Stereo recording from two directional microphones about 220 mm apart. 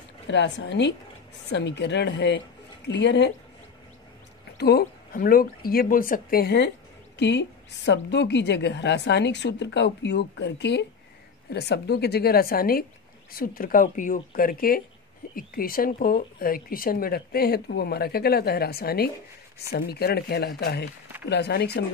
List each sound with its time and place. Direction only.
0.3 s a woman's voice: 55° left (ahead or behind)
4.6 s a woman's voice: 45° left (ahead or behind)